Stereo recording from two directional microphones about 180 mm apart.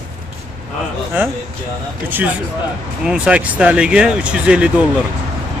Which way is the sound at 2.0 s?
10° right (ahead or behind).